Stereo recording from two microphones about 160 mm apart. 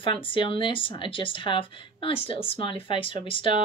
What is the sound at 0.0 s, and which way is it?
Speech, 35° left (ahead or behind).